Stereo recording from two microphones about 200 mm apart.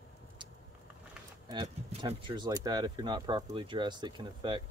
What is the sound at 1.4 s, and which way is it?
Speech, 20° right (ahead or behind).